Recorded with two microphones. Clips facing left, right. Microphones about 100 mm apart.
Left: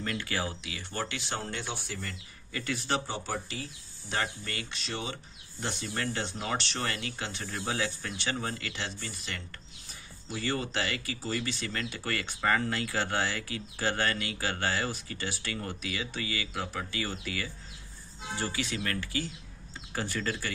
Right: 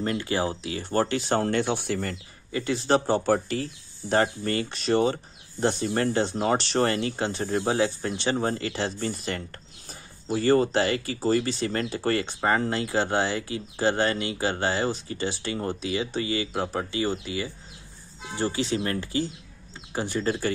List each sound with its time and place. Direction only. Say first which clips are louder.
0.0 s speech: right 7 dB; 30° right (ahead or behind); by 2.1 s 55° right (ahead or behind)
2.5 s speech: right 9 dB; 25° right (ahead or behind)
3.1 s speech: right 12 dB; 50° right (ahead or behind)
4.1 s speech: right 11 dB; 40° right (ahead or behind)